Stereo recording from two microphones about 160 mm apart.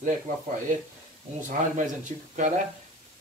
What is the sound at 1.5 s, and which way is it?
Speech, 55° right (ahead or behind).